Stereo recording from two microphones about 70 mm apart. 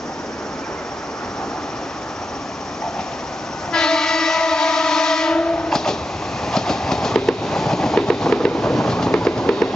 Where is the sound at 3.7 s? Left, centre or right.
Centre.